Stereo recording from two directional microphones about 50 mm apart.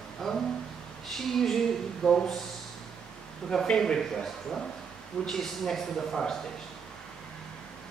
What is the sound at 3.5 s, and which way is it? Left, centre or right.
Speech, centre.